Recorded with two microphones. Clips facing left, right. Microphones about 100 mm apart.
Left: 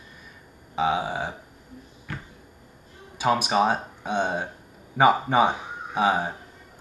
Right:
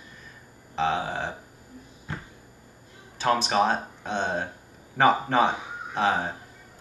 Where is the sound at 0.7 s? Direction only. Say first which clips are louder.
Left 2 dB; 10° left (ahead or behind).